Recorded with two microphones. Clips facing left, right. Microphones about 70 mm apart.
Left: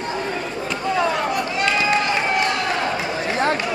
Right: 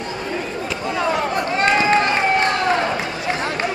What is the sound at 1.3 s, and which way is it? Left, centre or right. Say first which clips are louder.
Run: right 3 dB; right.